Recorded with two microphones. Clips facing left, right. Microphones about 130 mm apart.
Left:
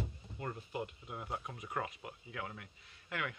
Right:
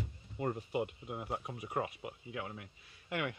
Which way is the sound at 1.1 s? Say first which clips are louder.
Even; 30° right (ahead or behind).